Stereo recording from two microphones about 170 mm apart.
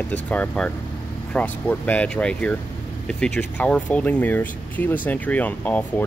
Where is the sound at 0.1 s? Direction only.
10° left (ahead or behind).